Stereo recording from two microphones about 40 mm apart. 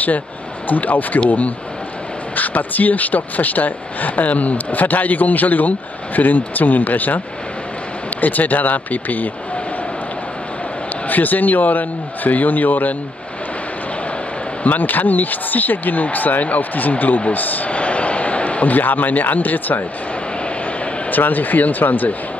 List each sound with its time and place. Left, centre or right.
0.7 s speech: left
2.3 s speech: left
8.2 s speech: left
11.1 s speech: left
14.6 s speech: left
17.6 s a man's voice: left
21.1 s speech: left